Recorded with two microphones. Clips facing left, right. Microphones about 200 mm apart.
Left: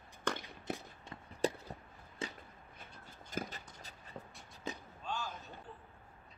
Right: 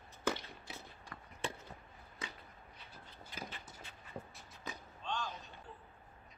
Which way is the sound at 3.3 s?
45° left (ahead or behind).